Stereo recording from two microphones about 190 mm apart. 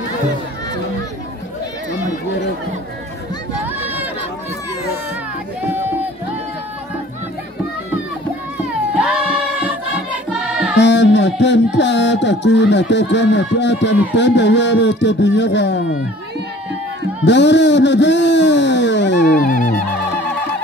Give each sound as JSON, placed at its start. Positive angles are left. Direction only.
{"t": 3.6, "sound": "run", "side_deg": -10}
{"t": 8.9, "sound": "music", "side_deg": -5}
{"t": 10.8, "sound": "music", "side_deg": 65}
{"t": 17.2, "sound": "music", "side_deg": 65}
{"t": 19.4, "sound": "fowl", "side_deg": 45}